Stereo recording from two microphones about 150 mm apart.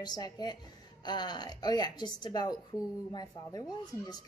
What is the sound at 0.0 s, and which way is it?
Speech, 25° left (ahead or behind).